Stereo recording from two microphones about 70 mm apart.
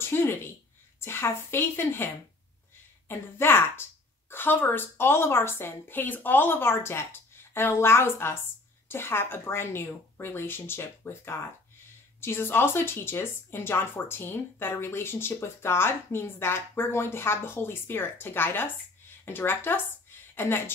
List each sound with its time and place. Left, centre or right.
0.0 s a sound: left
1.0 s speech: left
3.1 s speech: left